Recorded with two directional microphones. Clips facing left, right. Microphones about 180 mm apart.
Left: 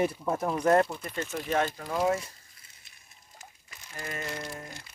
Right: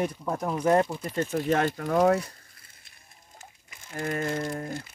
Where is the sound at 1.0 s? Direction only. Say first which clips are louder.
Right 6 dB; 30° right (ahead or behind).